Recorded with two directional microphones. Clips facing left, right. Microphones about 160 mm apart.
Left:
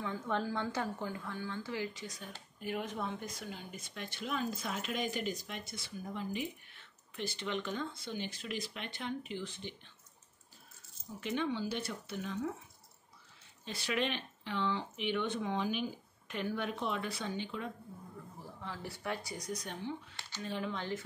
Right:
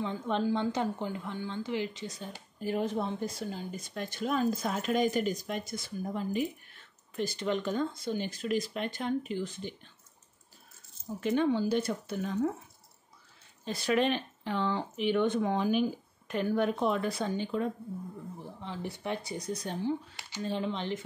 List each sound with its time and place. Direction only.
0.0 s a woman's voice: 20° right (ahead or behind); by 9.8 s 45° right (ahead or behind)
11.1 s speech: 45° right (ahead or behind)
13.7 s speech: 40° right (ahead or behind)
18.4 s a woman's voice: 20° right (ahead or behind); by 20.2 s 35° right (ahead or behind)
20.2 s a sound: 15° right (ahead or behind)
20.4 s a woman's voice: 25° right (ahead or behind)